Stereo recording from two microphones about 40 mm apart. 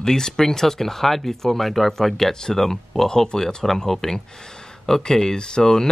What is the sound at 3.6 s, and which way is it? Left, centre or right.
Speech, centre.